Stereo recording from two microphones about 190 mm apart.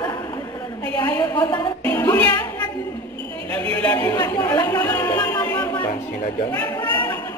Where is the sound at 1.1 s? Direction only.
15° left (ahead or behind).